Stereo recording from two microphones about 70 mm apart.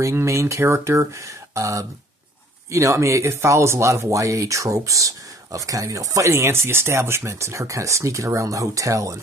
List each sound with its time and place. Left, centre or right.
0.0 s speech: right